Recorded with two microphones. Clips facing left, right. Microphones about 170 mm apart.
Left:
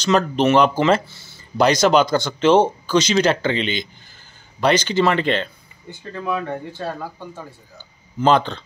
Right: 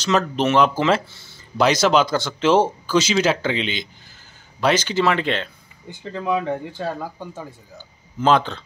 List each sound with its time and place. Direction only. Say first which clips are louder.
0.0 s speech: left 3 dB; centre (ahead or behind)
5.9 s speech: right 2 dB; 15° right (ahead or behind)
7.7 s speech: left 2 dB; centre (ahead or behind)